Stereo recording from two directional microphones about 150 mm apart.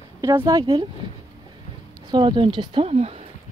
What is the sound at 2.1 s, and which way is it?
Speech, 30° right (ahead or behind).